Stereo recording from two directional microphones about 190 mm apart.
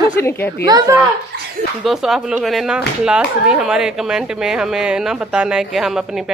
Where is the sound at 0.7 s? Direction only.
20° right (ahead or behind).